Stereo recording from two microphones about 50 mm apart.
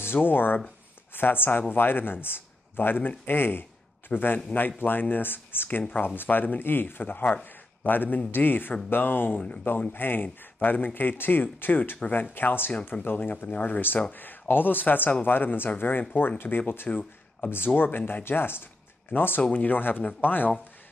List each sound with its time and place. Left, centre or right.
0.0 s speech: left
12.7 s speech: left
13.0 s speech: left
13.3 s speech: left